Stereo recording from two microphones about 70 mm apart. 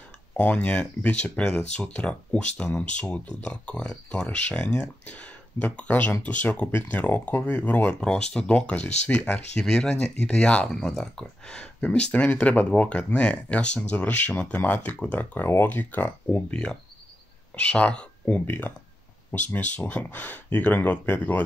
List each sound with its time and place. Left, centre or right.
0.4 s speech: centre
9.6 s speech: centre; by 16.5 s left
17.6 s speech: centre